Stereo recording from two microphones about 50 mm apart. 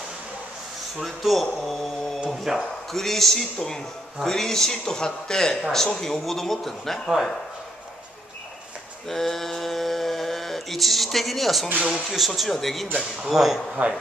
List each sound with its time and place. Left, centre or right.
0.9 s speech: centre
2.9 s a man's voice: centre
9.0 s mantra: centre
12.1 s speech: centre
13.8 s speech: right